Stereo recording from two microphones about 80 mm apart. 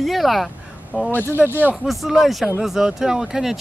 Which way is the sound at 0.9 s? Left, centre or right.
Left.